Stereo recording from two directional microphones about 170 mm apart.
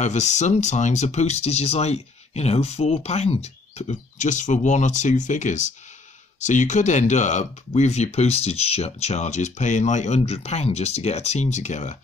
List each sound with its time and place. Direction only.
0.0 s speech: 45° left (ahead or behind)